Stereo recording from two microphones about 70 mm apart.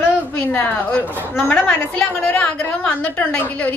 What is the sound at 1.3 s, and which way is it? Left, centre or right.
Speech, centre.